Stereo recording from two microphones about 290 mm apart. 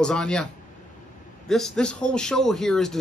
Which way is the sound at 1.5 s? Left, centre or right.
Centre.